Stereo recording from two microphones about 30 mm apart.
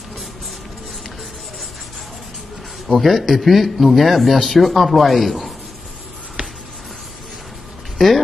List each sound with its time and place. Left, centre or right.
2.9 s speech: centre
6.4 s music: right
8.0 s speech: centre